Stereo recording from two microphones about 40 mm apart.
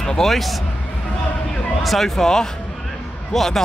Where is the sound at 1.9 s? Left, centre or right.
Centre.